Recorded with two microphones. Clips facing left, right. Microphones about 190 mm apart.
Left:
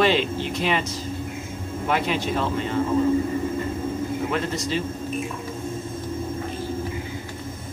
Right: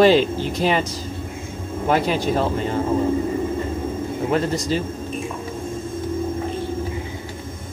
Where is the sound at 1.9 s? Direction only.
40° right (ahead or behind).